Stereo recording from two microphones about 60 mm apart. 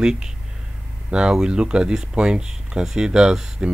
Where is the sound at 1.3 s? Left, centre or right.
Centre.